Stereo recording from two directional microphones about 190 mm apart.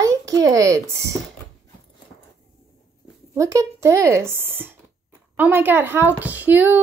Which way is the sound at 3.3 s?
15° right (ahead or behind).